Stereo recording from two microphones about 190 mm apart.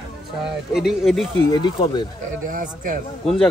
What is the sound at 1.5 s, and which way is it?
Speech, 25° left (ahead or behind).